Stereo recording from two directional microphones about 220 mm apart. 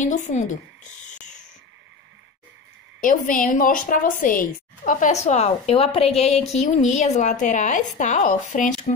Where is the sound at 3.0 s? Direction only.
35° left (ahead or behind).